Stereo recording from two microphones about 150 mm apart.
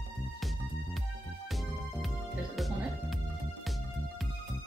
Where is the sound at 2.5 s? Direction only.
Centre (ahead or behind).